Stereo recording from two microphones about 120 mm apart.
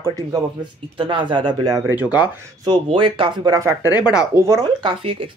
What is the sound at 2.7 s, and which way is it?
Speech, 45° right (ahead or behind).